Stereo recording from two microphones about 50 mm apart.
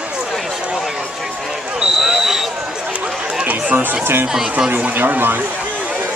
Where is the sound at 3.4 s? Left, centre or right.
Right.